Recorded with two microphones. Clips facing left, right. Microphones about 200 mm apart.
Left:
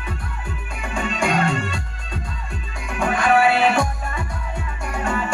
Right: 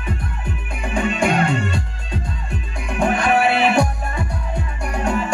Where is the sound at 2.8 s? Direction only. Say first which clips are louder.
Right 1 dB; 20° right (ahead or behind).